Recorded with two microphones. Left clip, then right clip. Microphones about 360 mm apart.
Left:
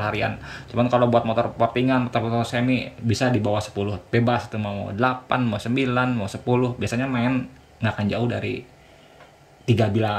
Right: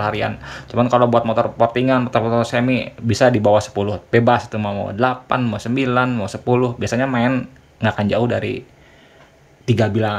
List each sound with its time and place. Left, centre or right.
0.0 s speech: centre
9.7 s speech: centre